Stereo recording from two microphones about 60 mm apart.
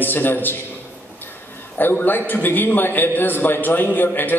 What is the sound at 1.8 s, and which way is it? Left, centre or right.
A man's voice, left.